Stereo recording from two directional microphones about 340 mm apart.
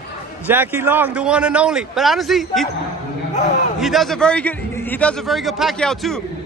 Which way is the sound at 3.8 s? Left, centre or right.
Centre.